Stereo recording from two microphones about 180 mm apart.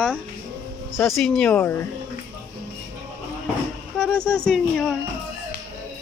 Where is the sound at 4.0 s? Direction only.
5° left (ahead or behind).